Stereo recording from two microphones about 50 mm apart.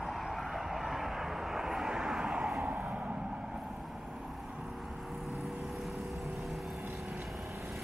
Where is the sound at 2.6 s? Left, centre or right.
Right.